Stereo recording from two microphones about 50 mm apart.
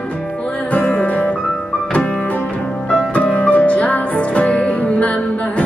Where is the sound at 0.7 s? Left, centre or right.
Left.